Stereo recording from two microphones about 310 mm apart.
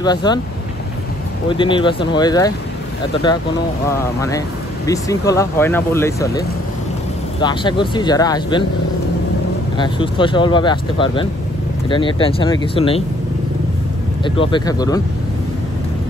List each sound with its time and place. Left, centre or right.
0.0 s speech: centre
1.5 s speech: centre
3.9 s speech: centre
7.4 s speech: centre
9.8 s speech: centre
14.2 s speech: centre